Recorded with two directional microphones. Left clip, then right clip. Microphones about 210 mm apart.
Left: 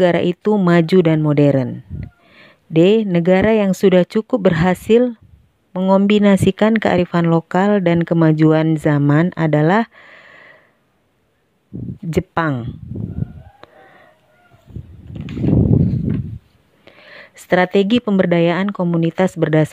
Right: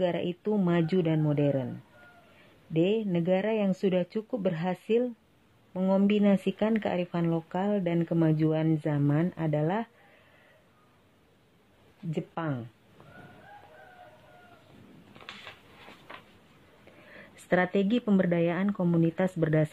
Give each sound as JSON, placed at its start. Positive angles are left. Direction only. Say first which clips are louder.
{"t": 0.0, "sound": "speech", "louder": "left 14 dB", "side_deg": 40}
{"t": 2.7, "sound": "speech", "louder": "left 14 dB", "side_deg": 40}
{"t": 12.1, "sound": "speech", "louder": "left 15 dB", "side_deg": 40}
{"t": 17.0, "sound": "speech", "louder": "left 12 dB", "side_deg": 35}